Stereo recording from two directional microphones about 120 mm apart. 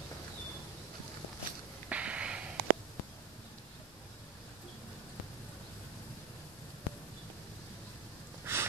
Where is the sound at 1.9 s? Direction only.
10° right (ahead or behind).